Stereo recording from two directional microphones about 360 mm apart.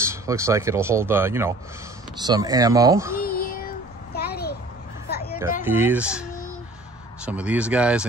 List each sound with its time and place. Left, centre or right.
0.1 s speech: centre
3.3 s child singing: left
5.6 s speech: centre
7.2 s speech: centre